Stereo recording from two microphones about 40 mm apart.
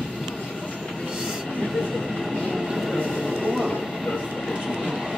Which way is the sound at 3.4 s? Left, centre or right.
Centre.